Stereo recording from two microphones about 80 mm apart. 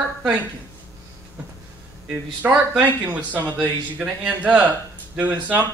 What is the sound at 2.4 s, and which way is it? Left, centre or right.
A man's voice, right.